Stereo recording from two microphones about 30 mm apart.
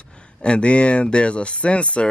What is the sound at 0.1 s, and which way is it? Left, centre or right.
A man's voice, left.